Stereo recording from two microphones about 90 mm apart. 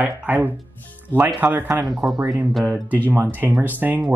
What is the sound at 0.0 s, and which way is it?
Speech, 20° right (ahead or behind).